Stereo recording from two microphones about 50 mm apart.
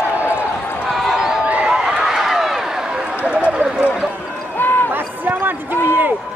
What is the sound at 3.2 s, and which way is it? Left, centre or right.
Clip-clop, right.